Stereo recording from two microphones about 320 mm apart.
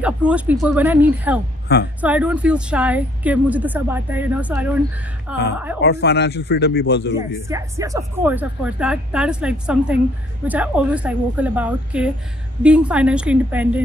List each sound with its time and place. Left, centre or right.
0.0 s speech: centre
5.8 s speech: left
7.2 s speech: centre